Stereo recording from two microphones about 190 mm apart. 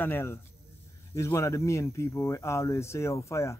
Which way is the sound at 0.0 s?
10° left (ahead or behind).